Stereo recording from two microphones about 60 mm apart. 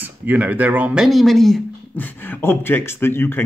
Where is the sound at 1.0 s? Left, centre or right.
Centre.